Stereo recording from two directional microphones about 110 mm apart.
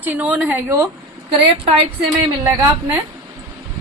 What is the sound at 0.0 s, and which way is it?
Speech, 15° right (ahead or behind).